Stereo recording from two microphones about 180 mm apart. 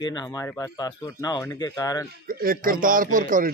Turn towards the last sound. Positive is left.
turn(degrees=-50)  # may be behind; listen again after turning